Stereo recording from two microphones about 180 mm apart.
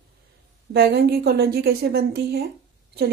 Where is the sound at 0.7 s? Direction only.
65° right (ahead or behind).